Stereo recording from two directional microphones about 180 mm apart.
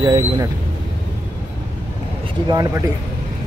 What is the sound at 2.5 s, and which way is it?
Speech, 20° right (ahead or behind).